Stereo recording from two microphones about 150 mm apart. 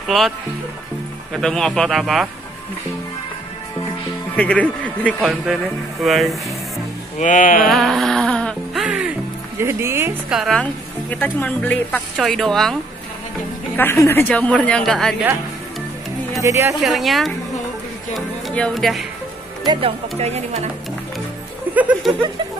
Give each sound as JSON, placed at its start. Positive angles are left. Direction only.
{"t": 1.3, "sound": "speech", "side_deg": 5}
{"t": 4.4, "sound": "a woman's voice", "side_deg": 10}
{"t": 7.2, "sound": "music", "side_deg": 60}
{"t": 7.6, "sound": "music", "side_deg": 0}
{"t": 8.8, "sound": "music", "side_deg": -5}
{"t": 9.6, "sound": "speech", "side_deg": -15}
{"t": 10.3, "sound": "speech", "side_deg": 0}
{"t": 13.7, "sound": "a woman's voice", "side_deg": 15}
{"t": 16.3, "sound": "speech", "side_deg": -20}
{"t": 16.8, "sound": "speech", "side_deg": 0}
{"t": 18.5, "sound": "speech", "side_deg": 5}
{"t": 19.6, "sound": "speech", "side_deg": -30}
{"t": 20.2, "sound": "speech", "side_deg": -45}
{"t": 21.7, "sound": "speech", "side_deg": -10}